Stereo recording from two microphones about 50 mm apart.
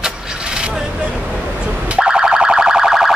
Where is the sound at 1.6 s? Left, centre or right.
Centre.